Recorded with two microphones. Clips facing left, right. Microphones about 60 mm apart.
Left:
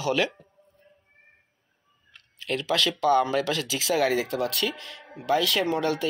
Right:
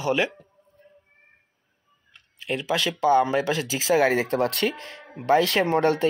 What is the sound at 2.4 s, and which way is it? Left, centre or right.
Speech, right.